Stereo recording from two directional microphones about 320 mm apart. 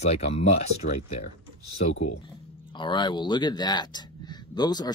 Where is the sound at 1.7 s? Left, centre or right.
Left.